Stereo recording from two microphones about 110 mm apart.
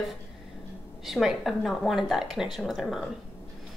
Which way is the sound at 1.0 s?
Centre (ahead or behind).